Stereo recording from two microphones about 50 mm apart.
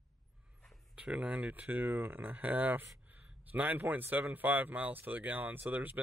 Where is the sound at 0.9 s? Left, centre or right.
Right.